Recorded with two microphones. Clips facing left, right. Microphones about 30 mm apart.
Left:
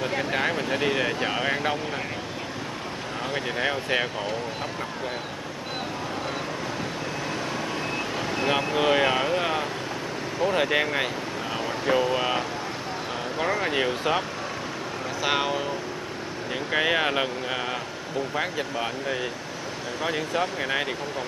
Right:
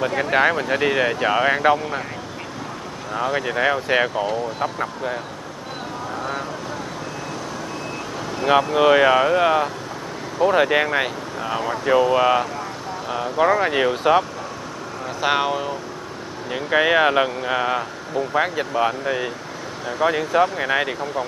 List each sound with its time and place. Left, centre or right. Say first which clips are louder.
0.2 s speech: right 10 dB; centre
3.2 s speech: right 7 dB; centre
8.7 s speech: right 7 dB; centre
15.2 s speech: right 5 dB; centre